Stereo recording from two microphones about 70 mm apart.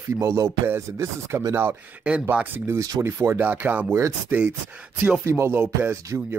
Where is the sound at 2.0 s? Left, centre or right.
Centre.